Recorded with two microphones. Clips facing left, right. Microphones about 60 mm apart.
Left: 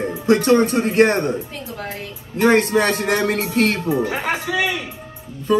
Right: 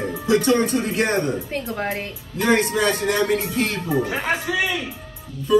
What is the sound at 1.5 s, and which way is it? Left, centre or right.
Speech, right.